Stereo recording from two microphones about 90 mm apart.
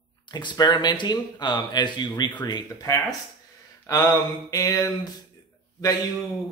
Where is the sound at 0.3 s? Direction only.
55° left (ahead or behind).